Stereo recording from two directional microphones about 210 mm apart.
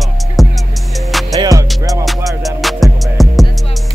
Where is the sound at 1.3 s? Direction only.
15° right (ahead or behind).